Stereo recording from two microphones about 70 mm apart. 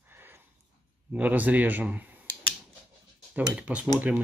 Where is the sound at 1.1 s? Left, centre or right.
Right.